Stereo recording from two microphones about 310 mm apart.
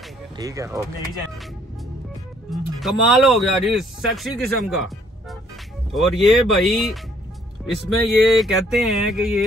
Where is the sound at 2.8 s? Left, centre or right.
Centre.